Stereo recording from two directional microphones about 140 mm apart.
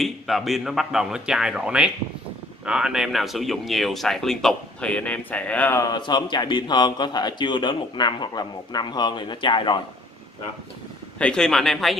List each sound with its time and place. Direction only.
0.0 s speech: centre (ahead or behind); by 5.9 s 15° left (ahead or behind)
5.9 s speech: 30° left (ahead or behind)
11.1 s speech: 5° left (ahead or behind)